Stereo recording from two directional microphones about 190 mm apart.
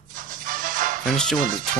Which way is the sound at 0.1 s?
45° right (ahead or behind).